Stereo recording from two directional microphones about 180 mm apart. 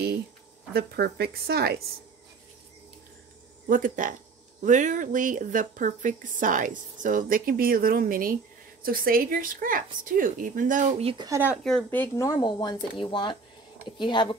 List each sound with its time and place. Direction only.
0.7 s speech: 60° right (ahead or behind)
3.6 s speech: 50° right (ahead or behind)
11.1 s speech: 20° right (ahead or behind)
11.6 s speech: 5° left (ahead or behind)
12.3 s speech: 25° left (ahead or behind)